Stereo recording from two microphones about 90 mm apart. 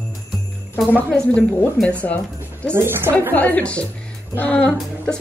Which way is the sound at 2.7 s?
25° right (ahead or behind).